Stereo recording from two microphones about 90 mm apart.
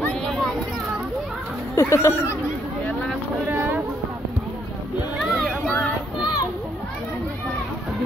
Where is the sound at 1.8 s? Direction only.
30° left (ahead or behind).